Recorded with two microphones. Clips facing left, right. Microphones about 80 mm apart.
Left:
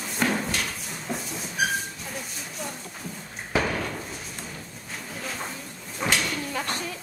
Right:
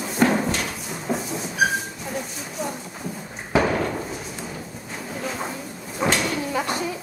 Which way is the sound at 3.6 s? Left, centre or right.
Centre.